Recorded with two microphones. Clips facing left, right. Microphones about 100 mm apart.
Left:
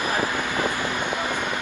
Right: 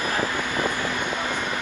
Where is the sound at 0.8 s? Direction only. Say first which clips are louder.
Left 1 dB; 15° left (ahead or behind).